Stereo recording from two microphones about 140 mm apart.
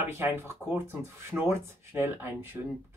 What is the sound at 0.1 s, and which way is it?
Speech, 15° right (ahead or behind).